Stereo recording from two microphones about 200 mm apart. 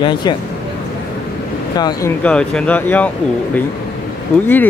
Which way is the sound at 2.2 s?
5° left (ahead or behind).